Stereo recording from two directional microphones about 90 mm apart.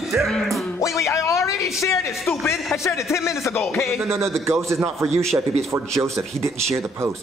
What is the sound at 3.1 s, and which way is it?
Speech, 25° left (ahead or behind).